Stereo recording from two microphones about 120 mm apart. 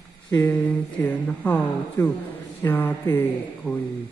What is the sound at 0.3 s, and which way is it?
Speech, 20° left (ahead or behind).